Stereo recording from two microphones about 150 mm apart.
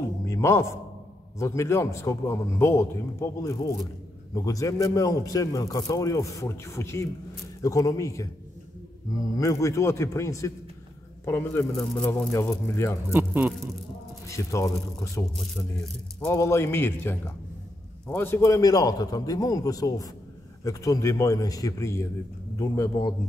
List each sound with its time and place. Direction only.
0.2 s music: 20° left (ahead or behind)
1.4 s a man's voice: 20° left (ahead or behind)
9.4 s a man's voice: 20° left (ahead or behind)
13.1 s speech: 15° right (ahead or behind)
14.2 s a man's voice: 20° left (ahead or behind)